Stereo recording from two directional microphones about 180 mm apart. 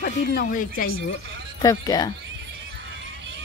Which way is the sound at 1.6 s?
20° left (ahead or behind).